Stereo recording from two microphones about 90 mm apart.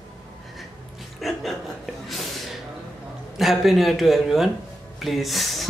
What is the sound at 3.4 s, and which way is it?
Speech, centre (ahead or behind).